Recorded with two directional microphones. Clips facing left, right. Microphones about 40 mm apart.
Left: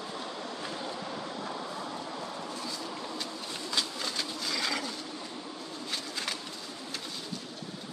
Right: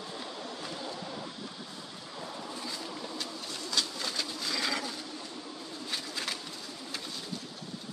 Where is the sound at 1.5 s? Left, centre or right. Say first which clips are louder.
Left 7 dB; left.